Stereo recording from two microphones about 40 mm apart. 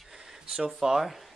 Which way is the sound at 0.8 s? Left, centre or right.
Centre.